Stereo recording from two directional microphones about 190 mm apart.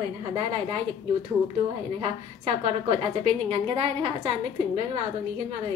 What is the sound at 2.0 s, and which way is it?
A woman's voice, 35° right (ahead or behind).